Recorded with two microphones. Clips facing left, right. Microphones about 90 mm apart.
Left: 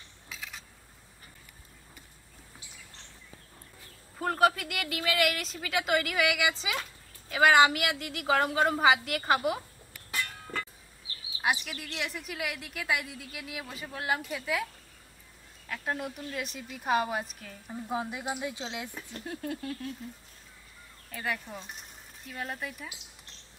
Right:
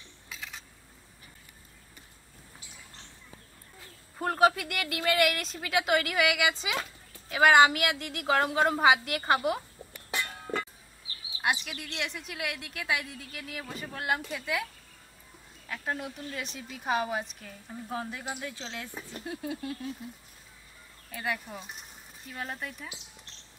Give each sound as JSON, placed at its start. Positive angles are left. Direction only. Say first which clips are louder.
{"t": 0.3, "sound": "a sound", "louder": "even", "side_deg": 0}
{"t": 4.2, "sound": "a woman's voice", "louder": "right 1 dB", "side_deg": 0}
{"t": 9.9, "sound": "a sound", "louder": "right 1 dB", "side_deg": -25}
{"t": 11.4, "sound": "a woman's voice", "louder": "even", "side_deg": 0}
{"t": 15.7, "sound": "a woman's voice", "louder": "left 1 dB", "side_deg": 0}
{"t": 17.6, "sound": "speech", "louder": "left 3 dB", "side_deg": 15}
{"t": 19.1, "sound": "a woman's voice", "louder": "even", "side_deg": -5}
{"t": 21.1, "sound": "speech", "louder": "right 1 dB", "side_deg": -5}